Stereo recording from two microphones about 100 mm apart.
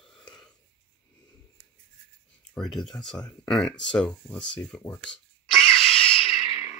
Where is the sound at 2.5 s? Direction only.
5° left (ahead or behind).